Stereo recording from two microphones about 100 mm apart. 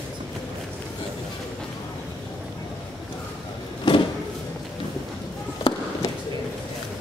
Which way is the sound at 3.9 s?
55° left (ahead or behind).